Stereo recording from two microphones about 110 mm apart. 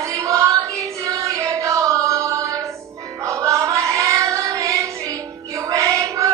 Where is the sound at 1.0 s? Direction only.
30° right (ahead or behind).